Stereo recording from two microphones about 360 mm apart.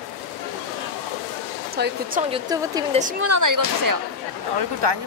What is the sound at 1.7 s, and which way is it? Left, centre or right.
Speech, right.